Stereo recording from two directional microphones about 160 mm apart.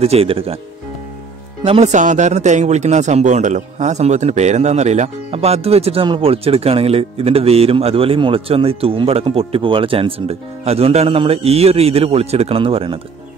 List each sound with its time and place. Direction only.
0.0 s speech: 40° right (ahead or behind)
1.6 s speech: 40° right (ahead or behind)